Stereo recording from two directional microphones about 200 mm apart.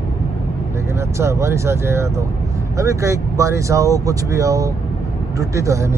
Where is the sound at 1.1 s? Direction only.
15° right (ahead or behind).